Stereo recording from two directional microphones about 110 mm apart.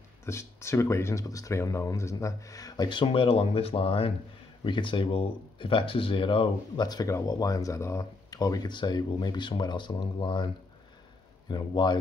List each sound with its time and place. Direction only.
0.2 s speech: 25° left (ahead or behind); by 12.0 s 40° left (ahead or behind)